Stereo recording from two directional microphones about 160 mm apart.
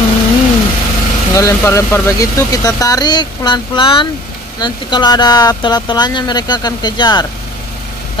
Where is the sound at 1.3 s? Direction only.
20° left (ahead or behind).